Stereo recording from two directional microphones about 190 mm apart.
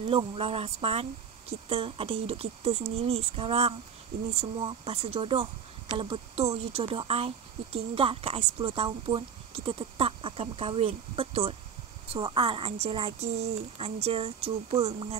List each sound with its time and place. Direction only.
0.0 s speech: 25° right (ahead or behind)